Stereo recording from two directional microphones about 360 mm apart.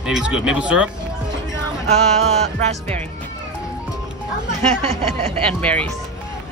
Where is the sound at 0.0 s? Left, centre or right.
Centre.